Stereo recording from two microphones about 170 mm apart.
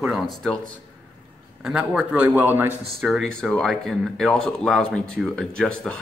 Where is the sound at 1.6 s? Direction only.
5° right (ahead or behind).